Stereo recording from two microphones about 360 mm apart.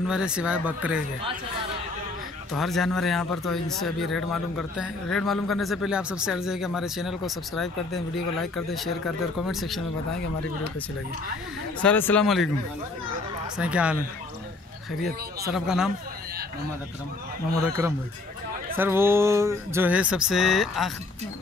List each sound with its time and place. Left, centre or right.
0.1 s a man's voice: centre
2.5 s a man's voice: centre
11.8 s a man's voice: centre
13.6 s a man's voice: centre
15.0 s a man's voice: centre
18.8 s a man's voice: centre